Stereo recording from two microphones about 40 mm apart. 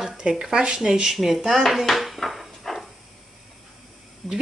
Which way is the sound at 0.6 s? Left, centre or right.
Right.